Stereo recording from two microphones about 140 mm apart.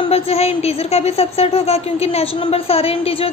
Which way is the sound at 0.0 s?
45° left (ahead or behind).